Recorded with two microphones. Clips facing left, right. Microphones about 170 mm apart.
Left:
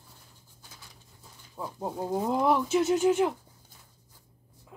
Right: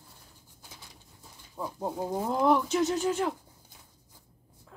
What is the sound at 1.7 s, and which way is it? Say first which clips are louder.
Speech: left 1 dB; centre (ahead or behind).